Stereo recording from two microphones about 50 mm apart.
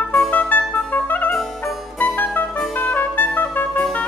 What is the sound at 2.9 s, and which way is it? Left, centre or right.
Music, left.